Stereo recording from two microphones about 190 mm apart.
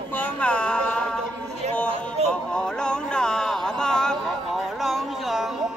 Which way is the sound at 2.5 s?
5° left (ahead or behind).